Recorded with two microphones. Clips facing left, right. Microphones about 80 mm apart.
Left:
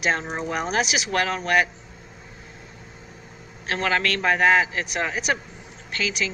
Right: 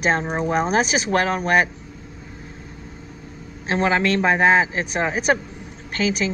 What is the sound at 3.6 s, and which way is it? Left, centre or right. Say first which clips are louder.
A woman's voice: right 4 dB; right.